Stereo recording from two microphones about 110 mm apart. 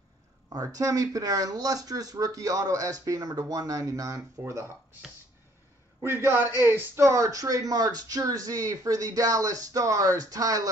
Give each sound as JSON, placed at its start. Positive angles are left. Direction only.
{"t": 0.5, "sound": "a man's voice", "side_deg": -30}
{"t": 5.9, "sound": "a man's voice", "side_deg": -20}